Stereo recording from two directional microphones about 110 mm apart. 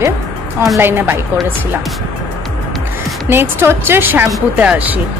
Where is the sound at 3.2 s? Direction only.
20° right (ahead or behind).